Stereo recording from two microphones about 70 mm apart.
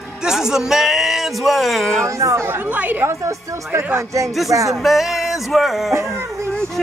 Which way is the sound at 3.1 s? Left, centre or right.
Right.